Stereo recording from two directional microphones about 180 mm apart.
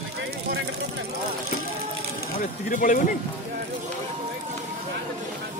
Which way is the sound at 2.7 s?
50° left (ahead or behind).